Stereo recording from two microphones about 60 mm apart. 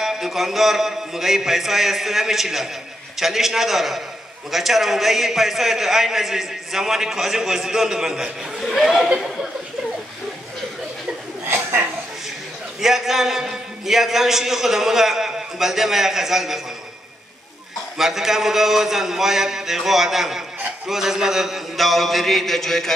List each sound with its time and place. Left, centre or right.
0.0 s a man's voice: centre
11.4 s chuckle: right
12.8 s a man's voice: centre
17.9 s a man's voice: centre